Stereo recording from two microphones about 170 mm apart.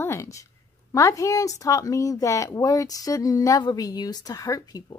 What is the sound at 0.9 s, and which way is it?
A woman's voice, 20° left (ahead or behind).